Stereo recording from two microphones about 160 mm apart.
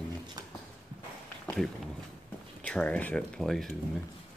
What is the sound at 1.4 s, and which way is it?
Run, 5° left (ahead or behind).